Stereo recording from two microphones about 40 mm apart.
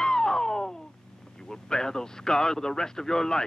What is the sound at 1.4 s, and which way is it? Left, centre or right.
Speech, centre.